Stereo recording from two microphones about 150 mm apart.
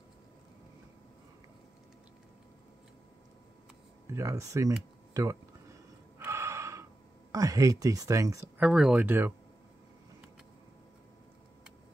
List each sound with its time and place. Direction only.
4.1 s speech: 20° right (ahead or behind)
6.1 s gasp: 20° right (ahead or behind)
7.3 s speech: 20° right (ahead or behind)
8.5 s speech: 5° right (ahead or behind)